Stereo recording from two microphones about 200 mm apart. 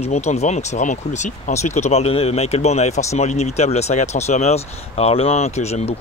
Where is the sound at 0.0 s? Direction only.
35° left (ahead or behind).